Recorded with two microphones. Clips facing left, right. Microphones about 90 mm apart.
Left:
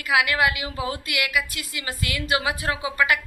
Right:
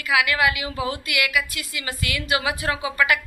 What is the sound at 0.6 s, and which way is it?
Speech, 5° right (ahead or behind).